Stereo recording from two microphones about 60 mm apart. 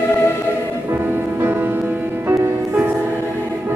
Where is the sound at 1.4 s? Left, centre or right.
Right.